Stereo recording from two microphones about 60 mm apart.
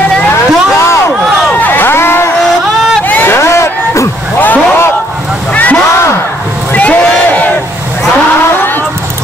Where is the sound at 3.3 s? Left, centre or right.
Left.